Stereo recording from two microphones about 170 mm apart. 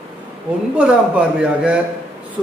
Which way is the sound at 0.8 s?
5° right (ahead or behind).